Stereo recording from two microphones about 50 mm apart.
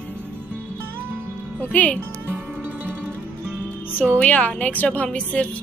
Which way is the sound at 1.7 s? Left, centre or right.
Left.